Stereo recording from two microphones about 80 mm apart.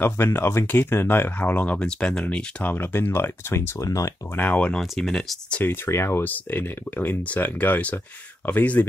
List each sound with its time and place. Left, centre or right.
0.0 s speech: left
3.7 s speech: left
4.4 s speech: centre
4.9 s speech: centre
5.9 s speech: left